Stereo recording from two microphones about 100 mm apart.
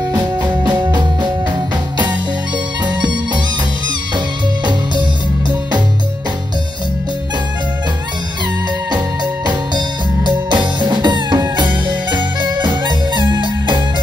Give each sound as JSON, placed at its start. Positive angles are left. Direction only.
{"t": 0.1, "sound": "music", "side_deg": -45}
{"t": 2.8, "sound": "music", "side_deg": -45}
{"t": 8.9, "sound": "music", "side_deg": -45}